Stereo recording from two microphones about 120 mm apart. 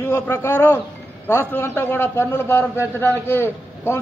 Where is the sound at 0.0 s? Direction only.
20° left (ahead or behind).